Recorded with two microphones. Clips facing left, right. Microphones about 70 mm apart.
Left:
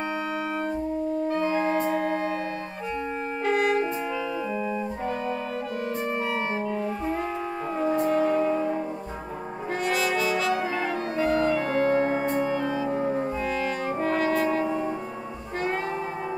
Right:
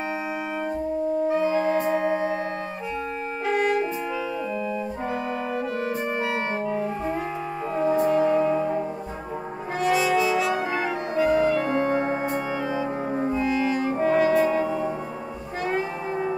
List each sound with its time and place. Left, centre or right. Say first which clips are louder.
1.3 s music: right 2 dB; centre
1.7 s organ: right 2 dB; centre
3.4 s music: even; centre
6.6 s music: right 2 dB; centre
7.7 s music: right 3 dB; centre
9.8 s brass instrument: right 5 dB; centre
11.1 s music: right 3 dB; centre
13.3 s french horn: right 4 dB; centre